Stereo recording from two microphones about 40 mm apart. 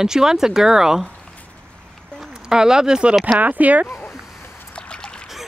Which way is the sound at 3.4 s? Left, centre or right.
Right.